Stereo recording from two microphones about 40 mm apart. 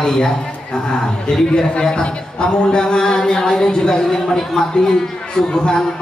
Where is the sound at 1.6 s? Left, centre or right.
Centre.